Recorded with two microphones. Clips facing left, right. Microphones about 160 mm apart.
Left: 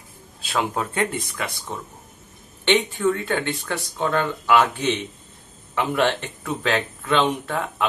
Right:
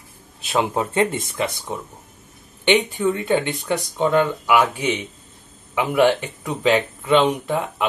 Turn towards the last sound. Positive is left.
turn(degrees=-15)  # may be behind; listen again after turning